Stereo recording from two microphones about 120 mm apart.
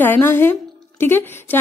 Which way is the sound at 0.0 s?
20° left (ahead or behind).